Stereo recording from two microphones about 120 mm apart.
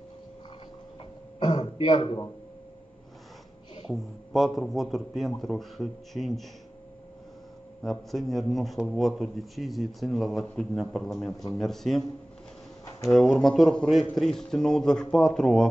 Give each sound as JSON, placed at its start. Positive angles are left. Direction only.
{"t": 1.4, "sound": "a man's voice", "side_deg": 40}
{"t": 3.9, "sound": "a man's voice", "side_deg": 0}
{"t": 7.8, "sound": "a man's voice", "side_deg": 0}
{"t": 13.1, "sound": "a man's voice", "side_deg": 0}